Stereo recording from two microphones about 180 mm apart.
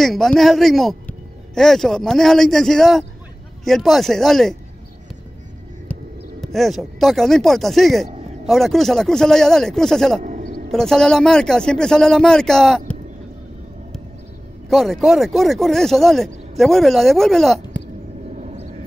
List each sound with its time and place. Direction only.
0.0 s speech: centre (ahead or behind)
6.4 s speech: centre (ahead or behind)
10.2 s a sound: 45° right (ahead or behind)
10.7 s speech: 5° left (ahead or behind)
14.7 s speech: centre (ahead or behind)
18.3 s a sound: 40° right (ahead or behind)